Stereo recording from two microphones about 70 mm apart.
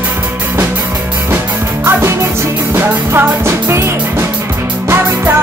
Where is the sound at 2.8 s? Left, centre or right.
Right.